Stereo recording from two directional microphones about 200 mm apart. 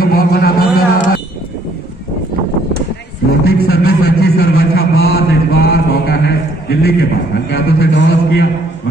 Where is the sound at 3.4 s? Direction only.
55° left (ahead or behind).